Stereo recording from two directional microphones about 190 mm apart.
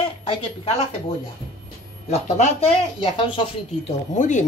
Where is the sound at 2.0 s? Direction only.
40° left (ahead or behind).